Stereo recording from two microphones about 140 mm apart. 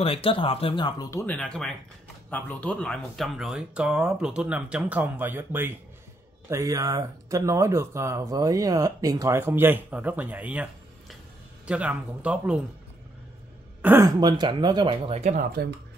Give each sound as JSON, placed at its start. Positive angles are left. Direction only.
{"t": 0.0, "sound": "speech", "side_deg": 40}
{"t": 1.1, "sound": "speech", "side_deg": 10}
{"t": 13.8, "sound": "speech", "side_deg": -20}
{"t": 14.2, "sound": "speech", "side_deg": -30}
{"t": 15.6, "sound": "speech", "side_deg": -90}